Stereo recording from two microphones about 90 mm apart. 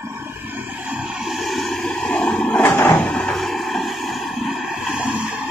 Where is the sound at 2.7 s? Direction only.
25° left (ahead or behind).